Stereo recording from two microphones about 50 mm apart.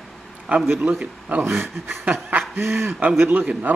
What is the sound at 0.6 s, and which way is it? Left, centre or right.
Speech, right.